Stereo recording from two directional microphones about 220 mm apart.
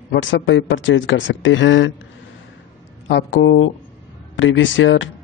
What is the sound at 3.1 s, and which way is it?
Speech, 55° left (ahead or behind).